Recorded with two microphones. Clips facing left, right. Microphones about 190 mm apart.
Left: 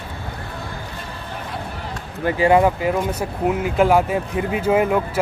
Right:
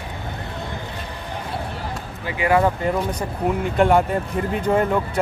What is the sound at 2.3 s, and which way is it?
Speech, 55° left (ahead or behind).